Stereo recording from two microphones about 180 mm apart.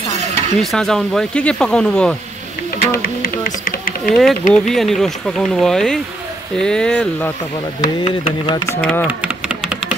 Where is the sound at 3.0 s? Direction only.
55° left (ahead or behind).